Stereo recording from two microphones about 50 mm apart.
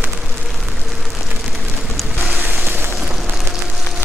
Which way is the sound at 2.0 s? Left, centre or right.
Centre.